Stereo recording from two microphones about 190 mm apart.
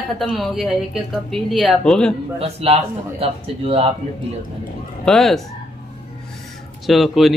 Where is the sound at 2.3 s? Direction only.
30° right (ahead or behind).